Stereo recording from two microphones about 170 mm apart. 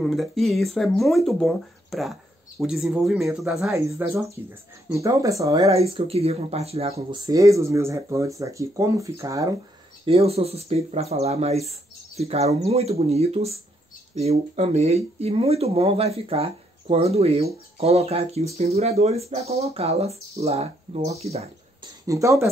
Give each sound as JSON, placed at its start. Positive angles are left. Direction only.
{"t": 0.0, "sound": "speech", "side_deg": 0}
{"t": 3.7, "sound": "speech", "side_deg": -15}
{"t": 5.7, "sound": "speech", "side_deg": -35}
{"t": 7.2, "sound": "speech", "side_deg": -20}
{"t": 10.0, "sound": "speech", "side_deg": -35}
{"t": 22.0, "sound": "speech", "side_deg": -20}